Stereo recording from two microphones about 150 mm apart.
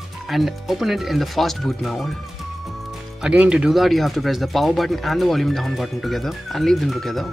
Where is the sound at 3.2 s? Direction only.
5° right (ahead or behind).